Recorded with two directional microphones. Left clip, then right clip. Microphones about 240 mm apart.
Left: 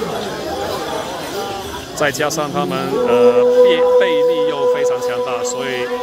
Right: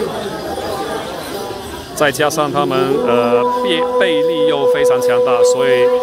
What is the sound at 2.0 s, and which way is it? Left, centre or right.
Speech, centre.